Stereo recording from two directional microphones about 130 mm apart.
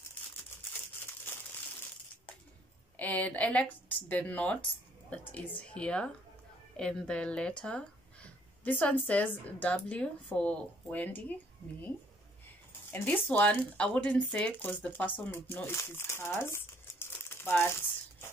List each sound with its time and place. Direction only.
3.0 s speech: 10° left (ahead or behind)
12.9 s speech: 15° left (ahead or behind)